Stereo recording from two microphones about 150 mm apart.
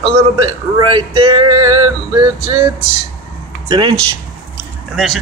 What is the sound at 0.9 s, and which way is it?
Speech, 35° right (ahead or behind).